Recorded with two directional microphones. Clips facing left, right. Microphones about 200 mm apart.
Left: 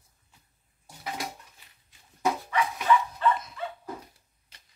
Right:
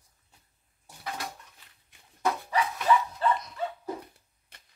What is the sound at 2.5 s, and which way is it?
Dog, 35° right (ahead or behind).